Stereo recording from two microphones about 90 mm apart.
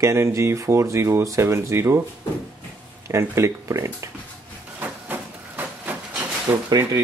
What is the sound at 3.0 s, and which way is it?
Speech, 30° right (ahead or behind).